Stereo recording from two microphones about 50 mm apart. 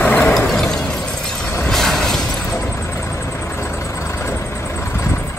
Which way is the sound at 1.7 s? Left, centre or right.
Centre.